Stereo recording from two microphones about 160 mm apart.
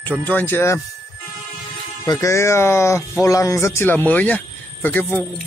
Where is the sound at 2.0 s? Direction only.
20° left (ahead or behind).